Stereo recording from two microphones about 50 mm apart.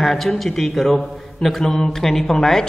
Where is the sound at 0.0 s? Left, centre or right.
Centre.